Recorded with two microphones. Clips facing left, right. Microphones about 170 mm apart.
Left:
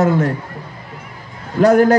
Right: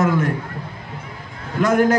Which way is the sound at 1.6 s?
35° left (ahead or behind).